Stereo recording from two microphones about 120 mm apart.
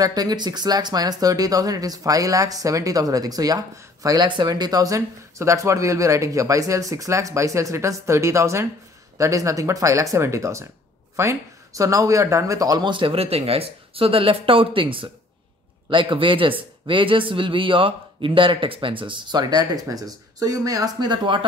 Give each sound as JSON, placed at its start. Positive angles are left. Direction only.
{"t": 0.0, "sound": "speech", "side_deg": -35}
{"t": 12.9, "sound": "speech", "side_deg": -50}